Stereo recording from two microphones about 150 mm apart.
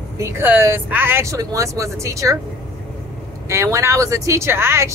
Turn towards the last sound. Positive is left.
turn(degrees=-15)  # may be behind; listen again after turning